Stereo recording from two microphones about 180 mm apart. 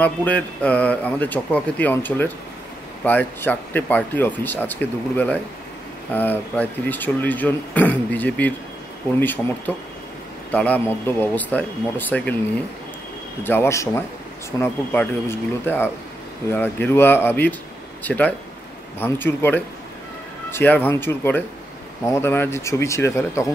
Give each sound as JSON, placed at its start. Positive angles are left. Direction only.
{"t": 0.0, "sound": "speech", "side_deg": 10}
{"t": 9.7, "sound": "speech", "side_deg": 10}
{"t": 13.4, "sound": "speech", "side_deg": 10}